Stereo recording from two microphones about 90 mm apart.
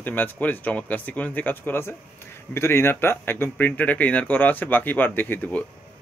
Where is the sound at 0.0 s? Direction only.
20° left (ahead or behind).